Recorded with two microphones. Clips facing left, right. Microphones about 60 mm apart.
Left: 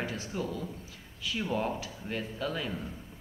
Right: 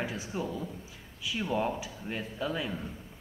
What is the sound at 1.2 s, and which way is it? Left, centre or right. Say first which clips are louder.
Speech: right 1 dB; centre.